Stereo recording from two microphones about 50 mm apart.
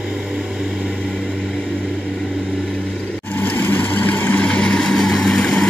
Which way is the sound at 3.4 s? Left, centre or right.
Left.